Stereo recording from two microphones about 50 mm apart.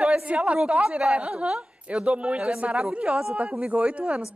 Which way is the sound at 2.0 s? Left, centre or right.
Right.